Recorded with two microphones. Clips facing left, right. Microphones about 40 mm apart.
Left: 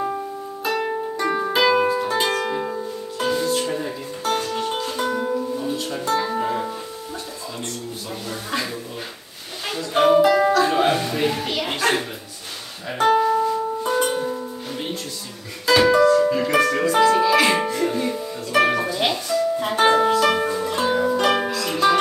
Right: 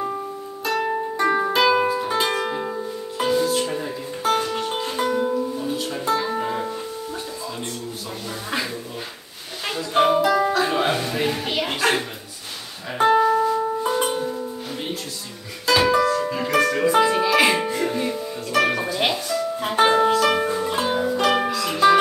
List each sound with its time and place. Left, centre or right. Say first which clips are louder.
0.7 s music: even; centre
1.1 s music: right 4 dB; centre
1.5 s music: even; centre
9.7 s music: left 1 dB; centre
13.0 s music: right 1 dB; centre
14.2 s music: even; centre
15.6 s music: left 3 dB; centre
16.8 s music: left 1 dB; centre